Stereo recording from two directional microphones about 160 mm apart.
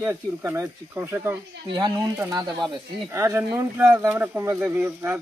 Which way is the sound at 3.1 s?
15° right (ahead or behind).